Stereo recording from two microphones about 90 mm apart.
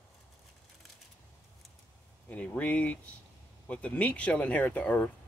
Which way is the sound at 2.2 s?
15° left (ahead or behind).